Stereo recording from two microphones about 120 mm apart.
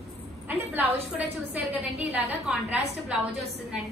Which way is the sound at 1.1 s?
10° right (ahead or behind).